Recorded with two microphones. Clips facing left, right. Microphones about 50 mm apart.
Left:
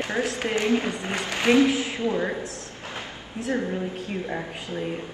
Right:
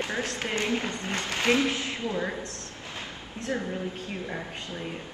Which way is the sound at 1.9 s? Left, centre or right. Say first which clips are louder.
Left 5 dB; left.